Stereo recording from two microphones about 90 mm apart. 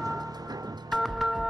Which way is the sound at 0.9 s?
Centre (ahead or behind).